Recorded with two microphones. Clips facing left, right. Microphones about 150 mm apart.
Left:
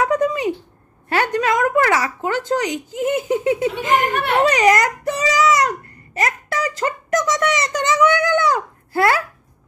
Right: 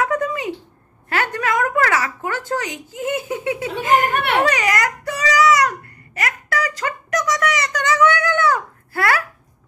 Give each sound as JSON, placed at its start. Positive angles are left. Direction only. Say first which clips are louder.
{"t": 0.0, "sound": "a sound", "louder": "left 3 dB", "side_deg": 20}
{"t": 1.0, "sound": "a woman's voice", "louder": "left 3 dB", "side_deg": 20}
{"t": 4.1, "sound": "speech", "louder": "even", "side_deg": -65}
{"t": 4.4, "sound": "baby cry", "louder": "left 7 dB", "side_deg": 20}